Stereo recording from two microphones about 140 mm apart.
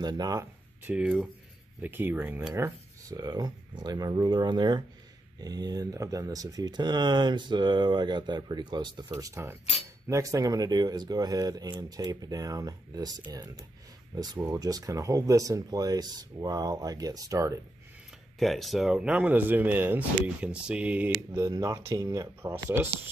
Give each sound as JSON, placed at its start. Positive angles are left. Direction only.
{"t": 0.0, "sound": "speech", "side_deg": -30}
{"t": 0.8, "sound": "speech", "side_deg": -10}
{"t": 18.4, "sound": "speech", "side_deg": 0}
{"t": 21.4, "sound": "speech", "side_deg": -25}